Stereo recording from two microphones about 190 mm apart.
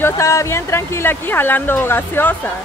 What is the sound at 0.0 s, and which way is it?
Speech, 15° left (ahead or behind).